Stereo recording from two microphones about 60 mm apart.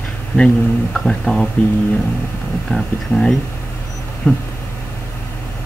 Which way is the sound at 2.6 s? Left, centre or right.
Centre.